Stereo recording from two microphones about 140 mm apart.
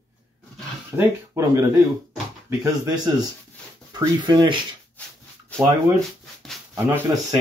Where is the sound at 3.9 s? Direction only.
30° right (ahead or behind).